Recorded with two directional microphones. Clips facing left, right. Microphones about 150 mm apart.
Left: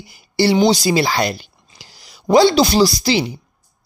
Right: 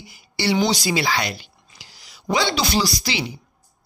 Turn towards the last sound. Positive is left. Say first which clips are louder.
# left 8 dB
turn(degrees=35)  # may be behind; listen again after turning